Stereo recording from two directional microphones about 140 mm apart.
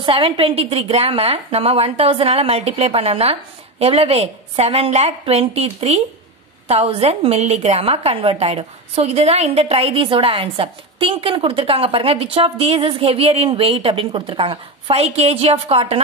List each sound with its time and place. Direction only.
0.0 s a woman's voice: 40° right (ahead or behind)